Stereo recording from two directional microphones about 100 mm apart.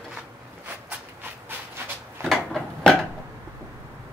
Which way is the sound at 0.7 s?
20° right (ahead or behind).